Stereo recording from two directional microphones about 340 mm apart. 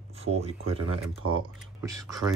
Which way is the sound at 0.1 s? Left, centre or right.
Centre.